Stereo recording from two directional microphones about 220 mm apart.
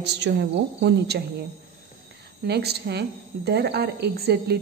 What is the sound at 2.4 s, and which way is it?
A woman's voice, 50° right (ahead or behind).